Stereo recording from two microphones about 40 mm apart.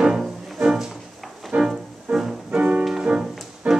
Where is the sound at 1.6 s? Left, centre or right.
Centre.